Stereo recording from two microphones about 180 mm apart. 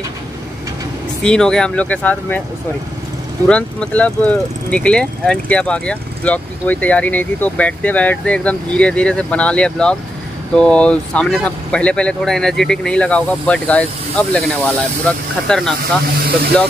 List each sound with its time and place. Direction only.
1.2 s speech: 5° left (ahead or behind)
3.4 s speech: 5° left (ahead or behind)